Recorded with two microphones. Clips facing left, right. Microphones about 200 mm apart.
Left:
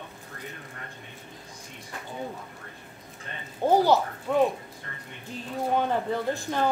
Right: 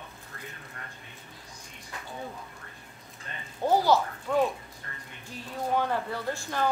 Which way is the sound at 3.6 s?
15° left (ahead or behind).